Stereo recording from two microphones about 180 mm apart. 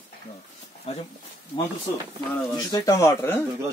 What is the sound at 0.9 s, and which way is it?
Speech, 35° left (ahead or behind).